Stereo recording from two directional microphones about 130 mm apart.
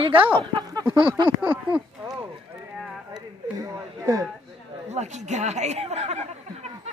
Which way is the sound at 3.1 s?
25° right (ahead or behind).